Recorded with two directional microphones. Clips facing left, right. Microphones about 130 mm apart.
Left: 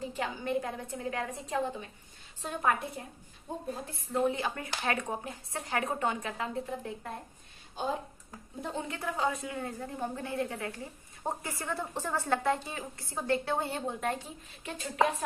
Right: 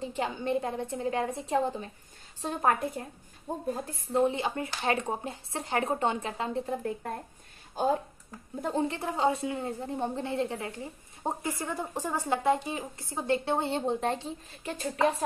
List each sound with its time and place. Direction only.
0.1 s a woman's voice: 25° right (ahead or behind); by 3.6 s 45° right (ahead or behind)
4.2 s a woman's voice: 25° right (ahead or behind)
7.8 s speech: 45° right (ahead or behind)
8.6 s a woman's voice: 30° right (ahead or behind)